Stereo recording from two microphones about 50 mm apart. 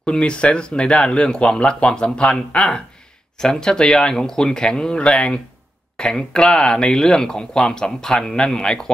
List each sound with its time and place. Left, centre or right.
0.0 s speech: centre